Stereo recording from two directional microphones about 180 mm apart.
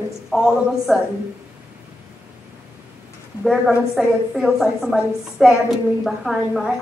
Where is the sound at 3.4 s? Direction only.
Centre (ahead or behind).